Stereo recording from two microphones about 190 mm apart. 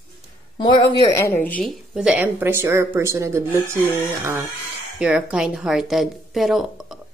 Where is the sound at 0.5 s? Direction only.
25° left (ahead or behind).